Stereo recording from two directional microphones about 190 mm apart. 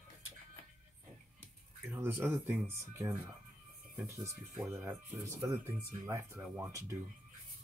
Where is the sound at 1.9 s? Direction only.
10° right (ahead or behind).